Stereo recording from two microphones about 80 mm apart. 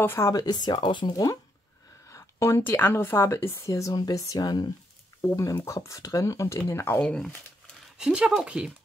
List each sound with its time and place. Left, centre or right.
0.0 s speech: left
0.3 s speech: left
1.1 s speech: left
3.9 s speech: left
5.2 s speech: left
7.0 s speech: centre
8.0 s speech: centre